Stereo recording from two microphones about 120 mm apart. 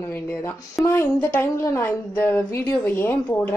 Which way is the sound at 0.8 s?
25° left (ahead or behind).